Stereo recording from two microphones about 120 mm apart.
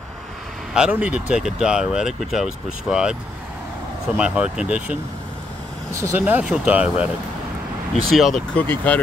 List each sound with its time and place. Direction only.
0.7 s speech: 5° right (ahead or behind)
4.2 s speech: 10° right (ahead or behind)
5.9 s speech: 25° right (ahead or behind)
6.2 s speech: 10° right (ahead or behind)
8.1 s speech: centre (ahead or behind)
8.5 s speech: 10° left (ahead or behind)